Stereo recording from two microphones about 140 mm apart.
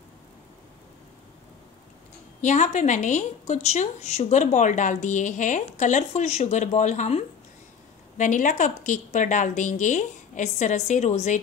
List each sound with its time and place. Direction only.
2.4 s speech: 60° left (ahead or behind)